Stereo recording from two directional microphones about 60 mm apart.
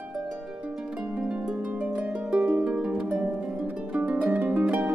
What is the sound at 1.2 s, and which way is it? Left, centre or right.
Harp, centre.